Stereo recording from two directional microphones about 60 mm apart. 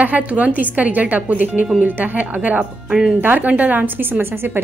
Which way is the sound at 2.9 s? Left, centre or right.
Centre.